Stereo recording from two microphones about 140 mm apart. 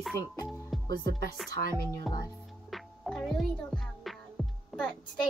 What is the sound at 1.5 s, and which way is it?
Speech, 20° left (ahead or behind).